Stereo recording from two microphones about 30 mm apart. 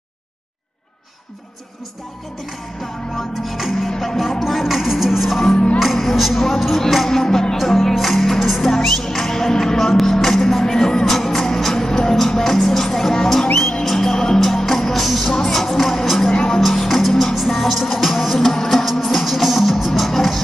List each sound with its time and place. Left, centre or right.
3.4 s speech: centre
5.4 s music: centre
5.8 s speech: centre
7.1 s music: centre
7.5 s speech: centre
8.8 s music: centre
12.6 s music: centre
15.8 s speech: centre
16.3 s music: left
16.6 s music: centre